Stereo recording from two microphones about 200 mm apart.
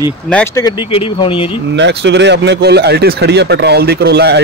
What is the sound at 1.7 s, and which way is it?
Speech, 60° right (ahead or behind).